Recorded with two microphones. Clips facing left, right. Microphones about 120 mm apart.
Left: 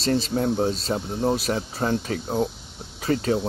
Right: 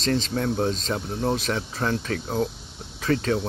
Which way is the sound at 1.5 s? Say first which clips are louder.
Left 2 dB; 25° left (ahead or behind).